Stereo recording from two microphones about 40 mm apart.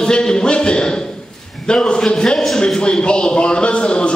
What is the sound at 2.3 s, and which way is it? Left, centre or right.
Speech, centre.